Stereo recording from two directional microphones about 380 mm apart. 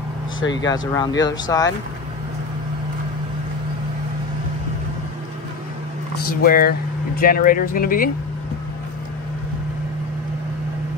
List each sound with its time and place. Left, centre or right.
0.4 s speech: left
0.7 s speech: centre
6.1 s speech: left